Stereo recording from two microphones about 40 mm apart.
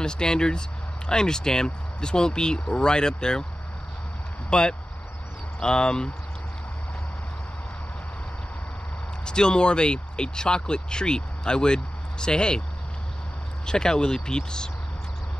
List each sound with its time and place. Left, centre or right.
0.0 s speech: left
4.5 s speech: left
9.2 s speech: left
13.7 s speech: centre